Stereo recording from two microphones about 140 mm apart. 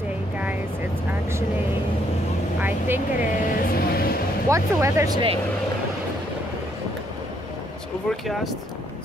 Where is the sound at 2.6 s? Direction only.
15° right (ahead or behind).